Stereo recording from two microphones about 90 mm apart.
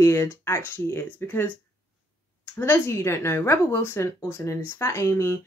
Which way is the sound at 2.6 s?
25° left (ahead or behind).